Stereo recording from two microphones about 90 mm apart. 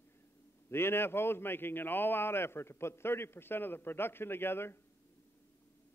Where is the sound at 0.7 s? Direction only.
25° left (ahead or behind).